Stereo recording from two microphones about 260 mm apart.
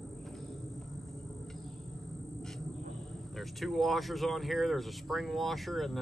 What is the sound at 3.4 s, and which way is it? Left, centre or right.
Speech, centre.